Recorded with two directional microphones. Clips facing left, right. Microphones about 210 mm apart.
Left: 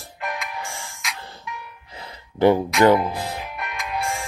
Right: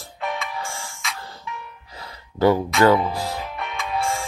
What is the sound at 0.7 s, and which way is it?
Music, 15° left (ahead or behind).